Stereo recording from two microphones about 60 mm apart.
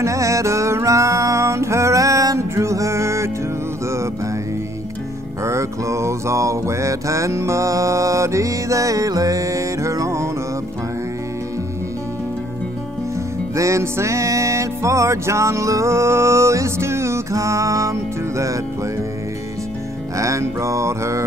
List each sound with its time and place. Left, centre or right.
0.0 s music: right
5.4 s music: right
13.6 s music: right
20.2 s mantra: right